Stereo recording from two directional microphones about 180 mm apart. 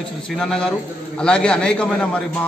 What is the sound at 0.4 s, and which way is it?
A man's voice, 5° left (ahead or behind).